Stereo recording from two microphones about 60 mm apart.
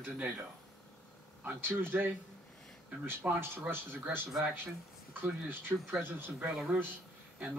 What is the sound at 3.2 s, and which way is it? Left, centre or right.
Speech, right.